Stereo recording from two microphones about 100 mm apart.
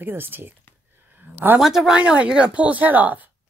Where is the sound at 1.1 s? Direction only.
20° right (ahead or behind).